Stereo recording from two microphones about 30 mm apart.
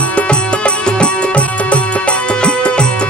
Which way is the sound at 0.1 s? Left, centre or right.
Left.